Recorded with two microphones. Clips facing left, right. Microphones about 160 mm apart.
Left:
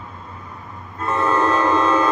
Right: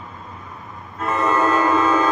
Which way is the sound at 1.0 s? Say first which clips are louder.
Even; 5° right (ahead or behind).